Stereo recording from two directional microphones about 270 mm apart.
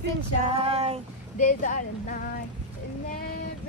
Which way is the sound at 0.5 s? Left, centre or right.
Right.